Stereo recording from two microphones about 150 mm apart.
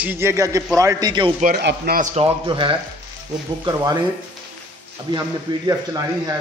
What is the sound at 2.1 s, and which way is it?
A man's voice, 35° right (ahead or behind).